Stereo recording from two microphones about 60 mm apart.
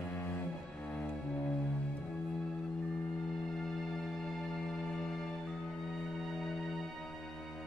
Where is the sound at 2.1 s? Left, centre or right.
Centre.